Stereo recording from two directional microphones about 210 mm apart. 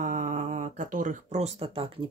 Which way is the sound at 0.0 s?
35° right (ahead or behind).